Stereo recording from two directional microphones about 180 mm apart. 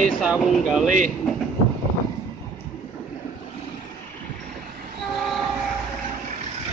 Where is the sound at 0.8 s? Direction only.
45° right (ahead or behind).